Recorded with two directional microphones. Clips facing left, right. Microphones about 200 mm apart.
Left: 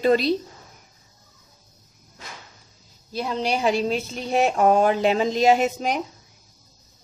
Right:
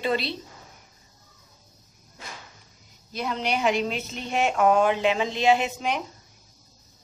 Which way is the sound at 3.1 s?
30° left (ahead or behind).